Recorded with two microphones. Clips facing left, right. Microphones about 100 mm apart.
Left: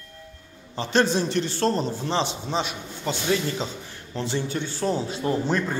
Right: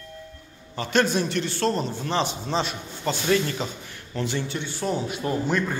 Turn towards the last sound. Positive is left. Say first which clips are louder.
# left 1 dB
turn(degrees=30)  # may be behind; listen again after turning